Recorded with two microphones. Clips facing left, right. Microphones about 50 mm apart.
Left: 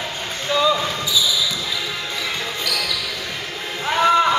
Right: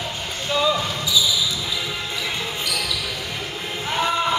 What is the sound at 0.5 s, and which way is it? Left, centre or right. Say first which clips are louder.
Basketball bounce: left 2 dB; centre.